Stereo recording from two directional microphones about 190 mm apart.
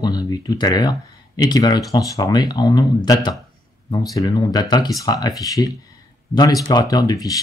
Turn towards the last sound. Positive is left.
turn(degrees=20)  # may be behind; listen again after turning